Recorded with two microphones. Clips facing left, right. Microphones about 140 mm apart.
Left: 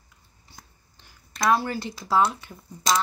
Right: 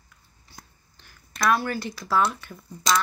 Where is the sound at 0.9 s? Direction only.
20° left (ahead or behind).